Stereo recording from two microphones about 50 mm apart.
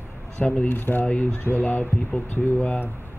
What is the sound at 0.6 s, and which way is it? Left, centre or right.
Speech, left.